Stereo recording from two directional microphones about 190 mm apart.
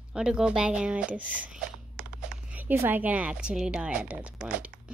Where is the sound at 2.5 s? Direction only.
10° right (ahead or behind).